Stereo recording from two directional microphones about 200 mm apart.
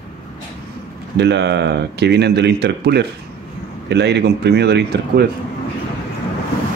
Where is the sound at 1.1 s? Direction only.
55° right (ahead or behind).